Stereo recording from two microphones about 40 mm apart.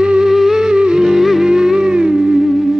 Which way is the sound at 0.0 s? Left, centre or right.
Right.